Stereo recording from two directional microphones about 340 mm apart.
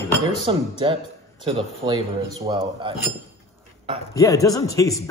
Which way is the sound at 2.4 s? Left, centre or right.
Centre.